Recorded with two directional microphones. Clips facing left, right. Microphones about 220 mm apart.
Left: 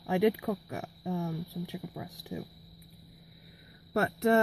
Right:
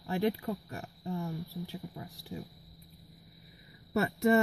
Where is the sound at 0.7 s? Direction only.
90° left.